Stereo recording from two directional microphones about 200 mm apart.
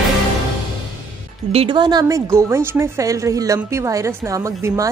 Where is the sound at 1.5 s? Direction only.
25° right (ahead or behind).